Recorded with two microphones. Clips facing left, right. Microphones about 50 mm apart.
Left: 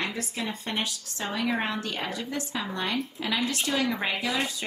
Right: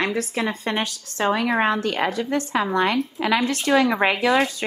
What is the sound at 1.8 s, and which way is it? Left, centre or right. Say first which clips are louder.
A woman's voice: right 9 dB; right.